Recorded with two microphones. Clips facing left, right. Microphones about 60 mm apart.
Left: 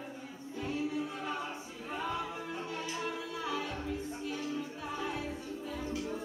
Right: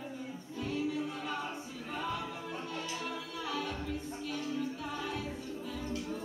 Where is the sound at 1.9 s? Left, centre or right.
Centre.